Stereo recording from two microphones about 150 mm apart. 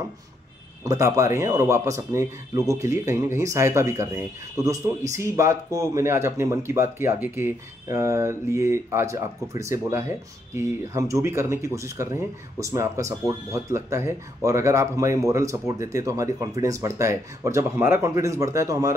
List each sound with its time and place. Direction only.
0.8 s speech: 20° right (ahead or behind)